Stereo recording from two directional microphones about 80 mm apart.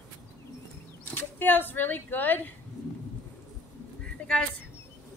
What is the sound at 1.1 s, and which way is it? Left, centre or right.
Speech, left.